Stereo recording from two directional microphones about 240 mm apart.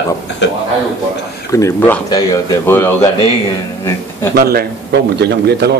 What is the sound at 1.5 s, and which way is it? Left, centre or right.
Speech, centre.